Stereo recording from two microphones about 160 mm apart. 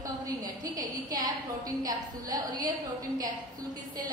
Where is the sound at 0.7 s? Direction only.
25° right (ahead or behind).